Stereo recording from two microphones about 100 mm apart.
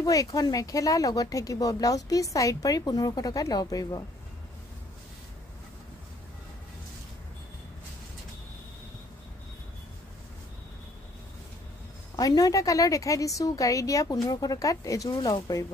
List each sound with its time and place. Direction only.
0.0 s speech: 35° left (ahead or behind)
12.2 s speech: 40° left (ahead or behind)